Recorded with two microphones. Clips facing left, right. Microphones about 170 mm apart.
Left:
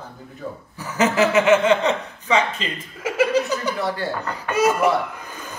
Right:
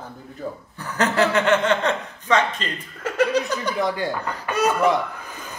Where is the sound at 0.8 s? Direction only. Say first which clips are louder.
Left 2 dB; 5° left (ahead or behind).